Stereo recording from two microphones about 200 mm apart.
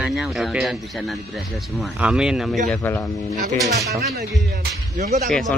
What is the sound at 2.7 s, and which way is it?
Speech, 10° left (ahead or behind).